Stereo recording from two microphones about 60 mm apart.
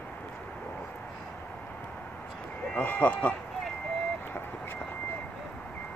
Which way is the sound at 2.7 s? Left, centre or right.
Left.